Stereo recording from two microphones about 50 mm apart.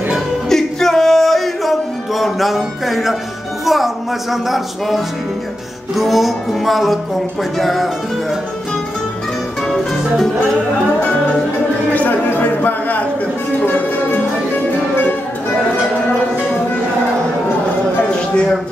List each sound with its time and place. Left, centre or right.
0.5 s music: centre
3.6 s speech: centre
9.7 s music: centre
11.9 s a sound: left